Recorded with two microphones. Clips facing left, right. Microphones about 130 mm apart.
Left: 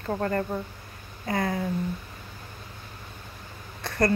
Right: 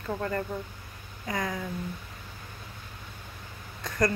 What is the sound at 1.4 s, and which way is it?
Speech, 35° left (ahead or behind).